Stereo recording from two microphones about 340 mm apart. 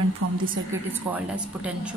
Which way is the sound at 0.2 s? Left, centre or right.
Right.